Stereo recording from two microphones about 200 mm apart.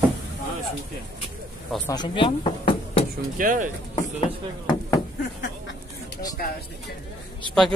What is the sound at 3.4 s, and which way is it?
Speech, 40° right (ahead or behind).